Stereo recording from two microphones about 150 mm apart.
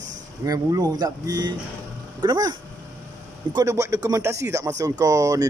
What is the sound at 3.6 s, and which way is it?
A man's voice, 20° right (ahead or behind).